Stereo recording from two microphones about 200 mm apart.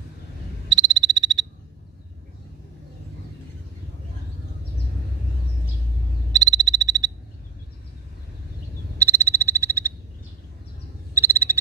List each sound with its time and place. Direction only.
0.7 s frog: 20° right (ahead or behind)
6.3 s frog: 20° right (ahead or behind)
8.9 s frog: 15° right (ahead or behind)
11.1 s frog: 15° right (ahead or behind)